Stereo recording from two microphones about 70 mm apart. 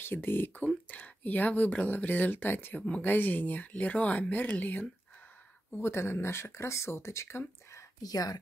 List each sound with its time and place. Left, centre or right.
0.0 s speech: left
5.8 s speech: left
8.0 s speech: left